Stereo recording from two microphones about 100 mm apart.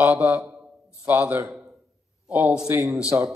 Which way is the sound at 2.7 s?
30° right (ahead or behind).